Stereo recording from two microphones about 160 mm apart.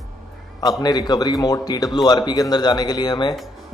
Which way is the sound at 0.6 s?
25° left (ahead or behind).